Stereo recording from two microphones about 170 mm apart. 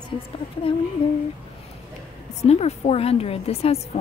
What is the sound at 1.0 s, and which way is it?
Speech, 30° left (ahead or behind).